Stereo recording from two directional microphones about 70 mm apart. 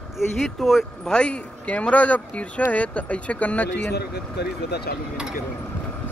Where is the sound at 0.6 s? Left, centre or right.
Centre.